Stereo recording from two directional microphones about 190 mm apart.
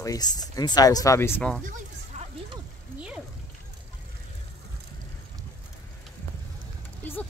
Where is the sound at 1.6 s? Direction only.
40° right (ahead or behind).